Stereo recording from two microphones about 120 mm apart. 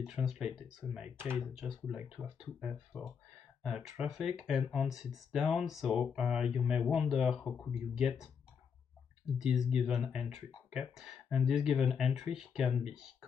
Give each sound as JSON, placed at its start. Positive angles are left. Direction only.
{"t": 0.0, "sound": "speech", "side_deg": -5}
{"t": 1.1, "sound": "speech", "side_deg": -20}
{"t": 1.5, "sound": "speech", "side_deg": -5}
{"t": 9.4, "sound": "speech", "side_deg": -5}